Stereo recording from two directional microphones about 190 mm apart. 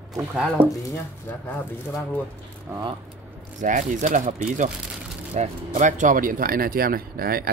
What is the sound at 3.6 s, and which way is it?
Speech, 40° right (ahead or behind).